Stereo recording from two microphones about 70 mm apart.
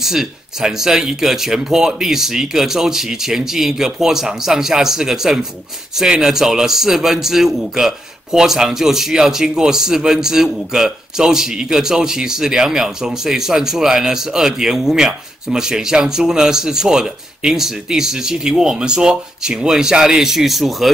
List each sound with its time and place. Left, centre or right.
0.0 s speech: centre